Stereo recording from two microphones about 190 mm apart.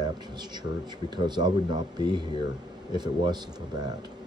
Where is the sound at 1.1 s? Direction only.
25° right (ahead or behind).